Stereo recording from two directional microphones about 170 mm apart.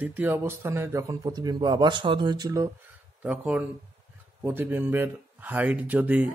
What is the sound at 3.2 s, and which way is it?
A man's voice, 5° right (ahead or behind).